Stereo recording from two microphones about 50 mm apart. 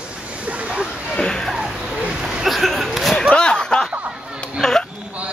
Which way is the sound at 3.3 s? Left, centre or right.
Centre.